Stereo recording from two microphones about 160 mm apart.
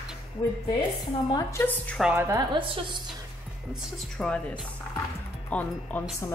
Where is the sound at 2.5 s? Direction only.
30° right (ahead or behind).